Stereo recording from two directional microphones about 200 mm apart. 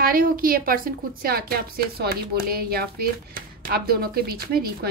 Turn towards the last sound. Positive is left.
turn(degrees=-50)  # may be behind; listen again after turning